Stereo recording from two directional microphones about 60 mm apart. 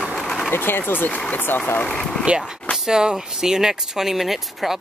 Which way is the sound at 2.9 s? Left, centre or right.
Centre.